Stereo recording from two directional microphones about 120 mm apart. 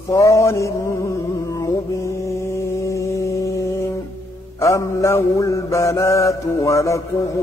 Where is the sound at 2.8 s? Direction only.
25° left (ahead or behind).